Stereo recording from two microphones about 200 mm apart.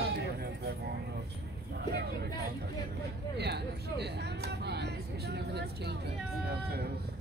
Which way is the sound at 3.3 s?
55° right (ahead or behind).